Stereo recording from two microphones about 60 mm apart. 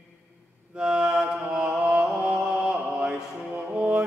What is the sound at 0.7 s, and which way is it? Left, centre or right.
Mantra, centre.